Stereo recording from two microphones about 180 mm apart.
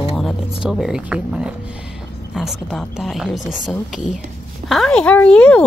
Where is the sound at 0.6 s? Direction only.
5° right (ahead or behind).